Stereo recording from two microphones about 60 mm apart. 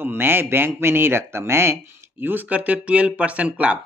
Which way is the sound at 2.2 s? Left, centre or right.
Right.